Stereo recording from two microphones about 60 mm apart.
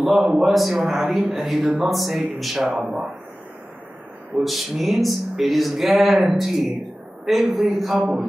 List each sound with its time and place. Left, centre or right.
0.1 s a man's voice: centre
1.0 s speech: right
1.3 s speech: centre
4.4 s speech: centre